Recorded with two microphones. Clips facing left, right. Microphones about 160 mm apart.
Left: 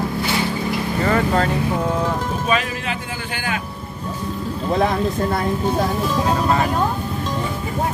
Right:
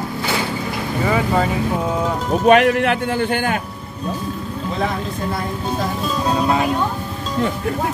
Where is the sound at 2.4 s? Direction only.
65° right (ahead or behind).